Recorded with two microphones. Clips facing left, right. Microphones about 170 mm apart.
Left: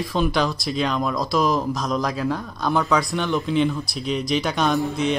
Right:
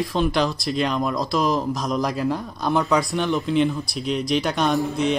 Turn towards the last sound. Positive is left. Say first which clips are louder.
# even
turn(degrees=0)  # may be behind; listen again after turning